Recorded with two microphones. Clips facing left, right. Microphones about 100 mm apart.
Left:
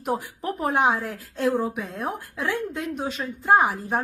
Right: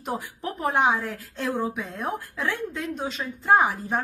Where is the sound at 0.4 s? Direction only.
5° left (ahead or behind).